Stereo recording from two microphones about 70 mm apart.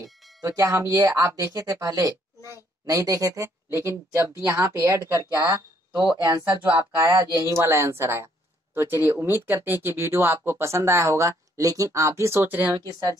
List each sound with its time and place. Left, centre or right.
0.4 s a woman's voice: right
12.4 s speech: right